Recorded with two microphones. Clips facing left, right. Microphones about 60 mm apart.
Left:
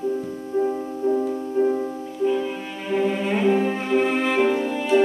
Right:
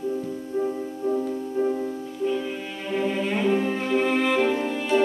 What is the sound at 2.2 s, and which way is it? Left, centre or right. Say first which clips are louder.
Cello: left 4 dB; centre.